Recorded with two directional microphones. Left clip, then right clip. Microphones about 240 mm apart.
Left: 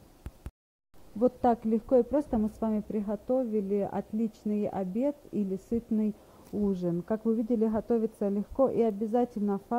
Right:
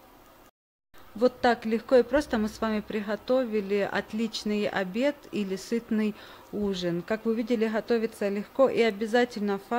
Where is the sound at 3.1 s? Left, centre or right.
Centre.